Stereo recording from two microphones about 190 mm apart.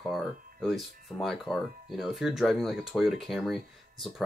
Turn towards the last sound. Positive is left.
turn(degrees=0)  # may be behind; listen again after turning